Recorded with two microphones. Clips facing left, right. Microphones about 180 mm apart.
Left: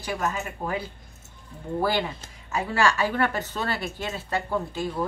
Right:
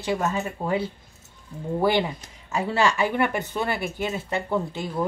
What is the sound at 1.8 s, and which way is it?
Speech, 20° right (ahead or behind).